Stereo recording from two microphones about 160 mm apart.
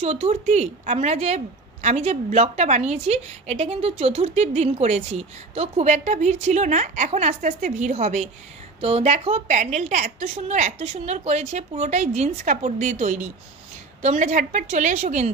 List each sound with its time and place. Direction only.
0.0 s a woman's voice: 45° right (ahead or behind)